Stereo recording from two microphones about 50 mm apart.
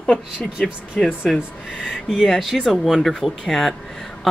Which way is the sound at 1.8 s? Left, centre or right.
Centre.